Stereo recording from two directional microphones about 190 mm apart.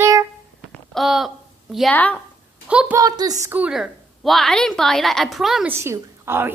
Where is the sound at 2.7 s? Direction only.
5° right (ahead or behind).